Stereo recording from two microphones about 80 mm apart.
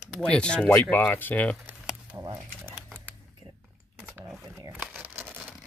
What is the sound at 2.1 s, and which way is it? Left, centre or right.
Speech, right.